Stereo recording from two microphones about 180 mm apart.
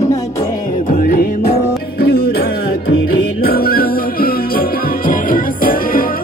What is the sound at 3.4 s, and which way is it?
Music, 55° left (ahead or behind).